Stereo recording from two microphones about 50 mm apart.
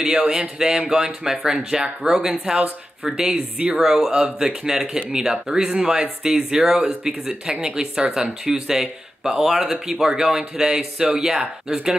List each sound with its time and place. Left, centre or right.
0.0 s speech: centre
3.8 s speech: centre